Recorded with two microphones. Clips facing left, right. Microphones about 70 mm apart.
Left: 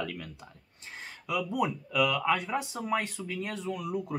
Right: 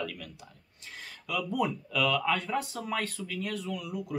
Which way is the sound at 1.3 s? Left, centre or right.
Centre.